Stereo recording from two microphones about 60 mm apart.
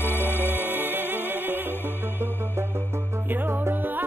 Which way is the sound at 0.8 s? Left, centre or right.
Right.